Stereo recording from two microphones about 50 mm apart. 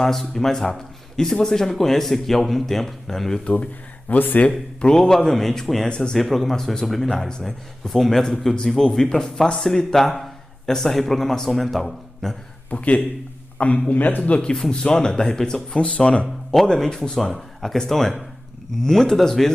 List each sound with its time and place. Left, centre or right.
0.0 s speech: centre
4.1 s speech: left
4.5 s speech: centre
5.9 s speech: centre
6.1 s speech: centre
12.6 s speech: left; by 19.5 s centre